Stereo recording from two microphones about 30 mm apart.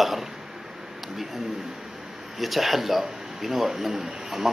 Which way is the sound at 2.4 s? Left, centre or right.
Centre.